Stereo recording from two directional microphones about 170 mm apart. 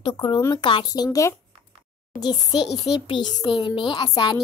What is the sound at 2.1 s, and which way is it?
Speech, 55° left (ahead or behind).